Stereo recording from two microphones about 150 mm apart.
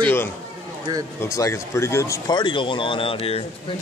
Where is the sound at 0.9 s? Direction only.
25° right (ahead or behind).